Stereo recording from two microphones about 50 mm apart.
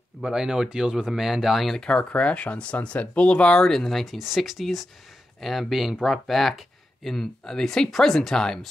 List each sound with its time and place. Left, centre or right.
0.2 s speech: centre
1.7 s speech: centre
3.5 s speech: centre
3.8 s speech: centre